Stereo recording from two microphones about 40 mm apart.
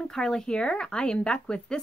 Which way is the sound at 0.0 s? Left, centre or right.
Centre.